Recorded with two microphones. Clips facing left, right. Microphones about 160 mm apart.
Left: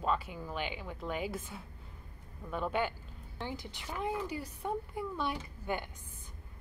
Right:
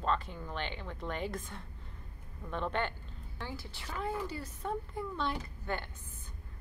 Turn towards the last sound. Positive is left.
turn(degrees=10)  # may be behind; listen again after turning